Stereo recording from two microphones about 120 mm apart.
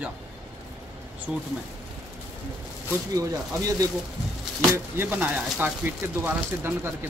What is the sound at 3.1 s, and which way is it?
Speech, 30° right (ahead or behind).